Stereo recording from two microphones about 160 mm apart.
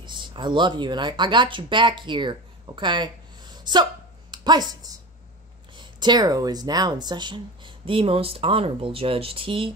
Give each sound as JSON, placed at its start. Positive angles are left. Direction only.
{"t": 0.0, "sound": "speech", "side_deg": -30}